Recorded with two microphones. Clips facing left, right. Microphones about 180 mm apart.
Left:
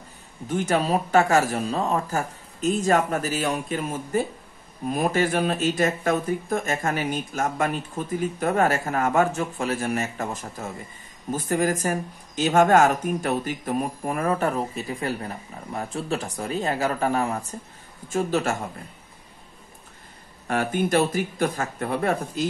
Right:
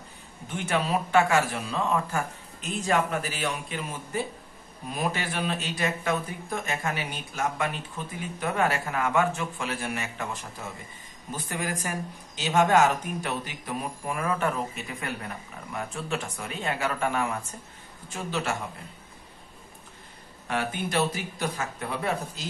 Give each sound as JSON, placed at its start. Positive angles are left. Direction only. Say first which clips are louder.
{"t": 0.5, "sound": "speech", "louder": "left 5 dB", "side_deg": 40}
{"t": 20.4, "sound": "speech", "louder": "left 6 dB", "side_deg": 45}